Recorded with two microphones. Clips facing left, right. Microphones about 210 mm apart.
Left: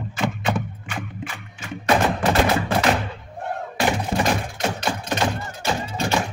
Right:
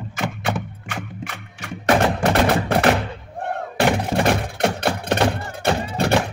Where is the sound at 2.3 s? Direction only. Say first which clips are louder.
Right 1 dB; 60° right (ahead or behind).